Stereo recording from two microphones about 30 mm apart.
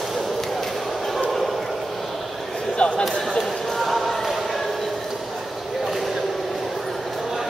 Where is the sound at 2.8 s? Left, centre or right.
Left.